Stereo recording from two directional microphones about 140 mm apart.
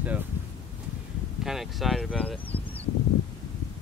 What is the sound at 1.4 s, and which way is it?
Speech, centre (ahead or behind).